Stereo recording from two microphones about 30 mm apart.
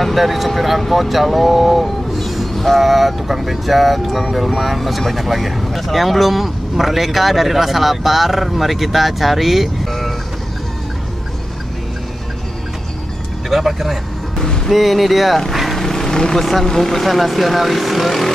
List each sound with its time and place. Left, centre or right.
0.0 s speech: centre
2.1 s music: centre
2.8 s speech: centre
13.5 s speech: centre
15.5 s vehicle: centre
15.8 s vehicle: centre
16.3 s speech: centre
17.0 s speech: centre